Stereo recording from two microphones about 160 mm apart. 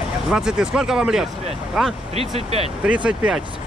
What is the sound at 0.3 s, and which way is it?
Speech, 5° right (ahead or behind).